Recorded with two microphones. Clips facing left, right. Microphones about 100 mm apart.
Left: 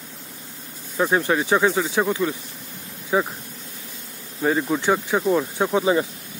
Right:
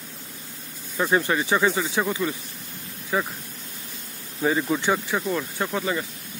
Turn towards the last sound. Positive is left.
turn(degrees=20)  # may be behind; listen again after turning